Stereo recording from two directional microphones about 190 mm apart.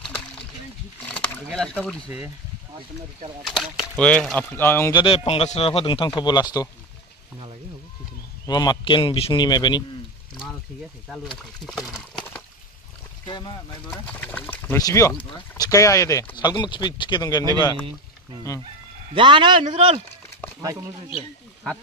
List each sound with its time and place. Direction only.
1.1 s speech: 5° left (ahead or behind)
2.0 s speech: 5° right (ahead or behind)
3.4 s speech: centre (ahead or behind)
4.9 s speech: 30° left (ahead or behind)
8.5 s speech: 20° left (ahead or behind)
11.1 s speech: centre (ahead or behind)
13.3 s speech: 25° left (ahead or behind)
13.8 s speech: 10° left (ahead or behind)
19.1 s a man's voice: 25° right (ahead or behind)